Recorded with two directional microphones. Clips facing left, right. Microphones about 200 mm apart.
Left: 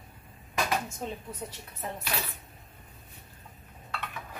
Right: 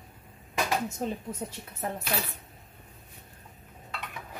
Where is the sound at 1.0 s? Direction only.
40° right (ahead or behind).